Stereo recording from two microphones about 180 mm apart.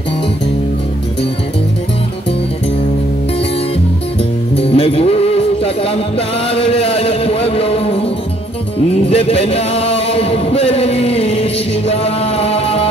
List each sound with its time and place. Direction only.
4.6 s music: 35° left (ahead or behind)
9.1 s chant: 35° left (ahead or behind)
11.9 s music: 35° left (ahead or behind)